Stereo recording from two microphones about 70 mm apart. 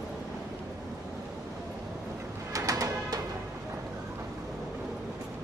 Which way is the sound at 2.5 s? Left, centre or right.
Right.